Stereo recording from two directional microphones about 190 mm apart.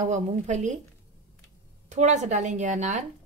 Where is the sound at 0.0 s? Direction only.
40° right (ahead or behind).